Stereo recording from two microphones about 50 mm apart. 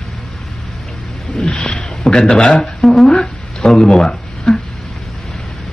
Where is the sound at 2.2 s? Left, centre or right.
Centre.